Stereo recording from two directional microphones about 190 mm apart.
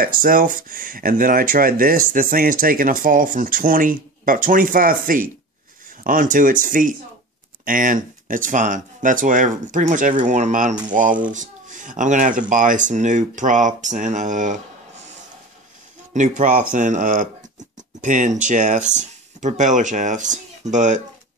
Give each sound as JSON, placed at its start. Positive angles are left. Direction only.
{"t": 0.0, "sound": "speech", "side_deg": -45}
{"t": 16.1, "sound": "speech", "side_deg": -40}